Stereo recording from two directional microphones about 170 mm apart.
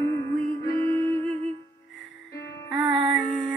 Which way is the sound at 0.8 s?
15° left (ahead or behind).